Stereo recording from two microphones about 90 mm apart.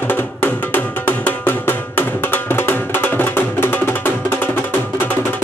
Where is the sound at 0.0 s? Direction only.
20° left (ahead or behind).